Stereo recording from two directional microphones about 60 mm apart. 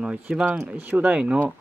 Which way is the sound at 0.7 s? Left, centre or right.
Right.